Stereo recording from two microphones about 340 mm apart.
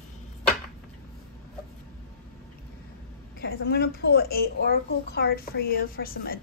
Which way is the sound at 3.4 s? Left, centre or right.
Left.